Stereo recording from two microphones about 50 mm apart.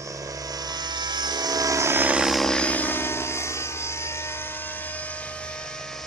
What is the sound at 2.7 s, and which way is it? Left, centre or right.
Music, left.